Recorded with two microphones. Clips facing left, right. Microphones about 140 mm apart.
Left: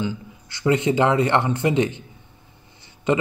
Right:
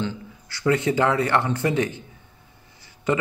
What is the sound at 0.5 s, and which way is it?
A man's voice, 20° left (ahead or behind).